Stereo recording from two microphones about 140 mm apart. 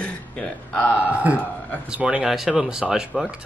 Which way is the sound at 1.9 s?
10° right (ahead or behind).